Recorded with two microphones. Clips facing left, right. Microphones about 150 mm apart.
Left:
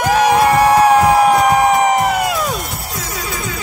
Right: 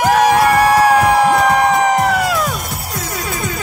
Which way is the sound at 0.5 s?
20° left (ahead or behind).